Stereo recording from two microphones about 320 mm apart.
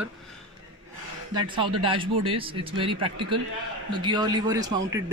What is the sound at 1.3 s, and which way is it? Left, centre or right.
A man's voice, centre.